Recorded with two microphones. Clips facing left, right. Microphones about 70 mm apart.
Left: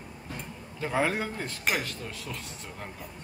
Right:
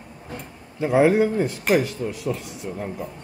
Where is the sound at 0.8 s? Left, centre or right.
Centre.